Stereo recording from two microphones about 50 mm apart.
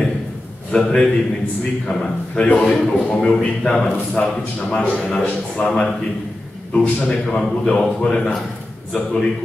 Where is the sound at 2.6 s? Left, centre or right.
Centre.